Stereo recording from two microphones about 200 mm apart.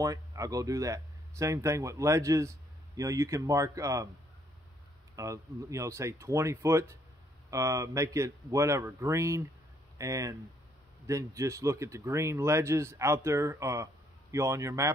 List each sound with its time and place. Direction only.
0.0 s speech: 15° right (ahead or behind)
5.1 s speech: 15° right (ahead or behind)